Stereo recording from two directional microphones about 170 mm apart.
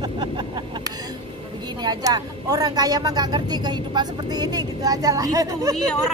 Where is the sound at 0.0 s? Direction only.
25° right (ahead or behind).